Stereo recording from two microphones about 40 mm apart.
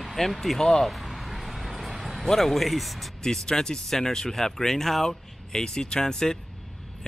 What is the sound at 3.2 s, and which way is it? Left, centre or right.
Speech, centre.